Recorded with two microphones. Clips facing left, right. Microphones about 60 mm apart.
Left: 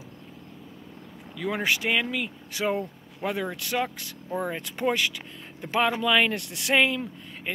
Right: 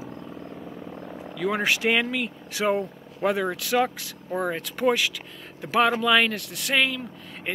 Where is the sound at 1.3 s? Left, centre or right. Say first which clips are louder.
Right 2 dB; centre.